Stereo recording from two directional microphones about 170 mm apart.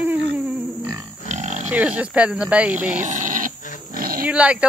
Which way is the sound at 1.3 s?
40° right (ahead or behind).